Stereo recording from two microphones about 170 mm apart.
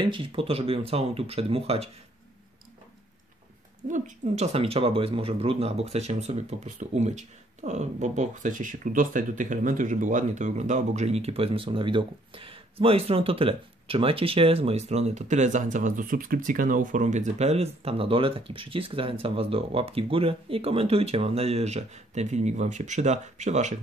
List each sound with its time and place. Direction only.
0.0 s speech: 30° right (ahead or behind)
3.8 s speech: 50° right (ahead or behind)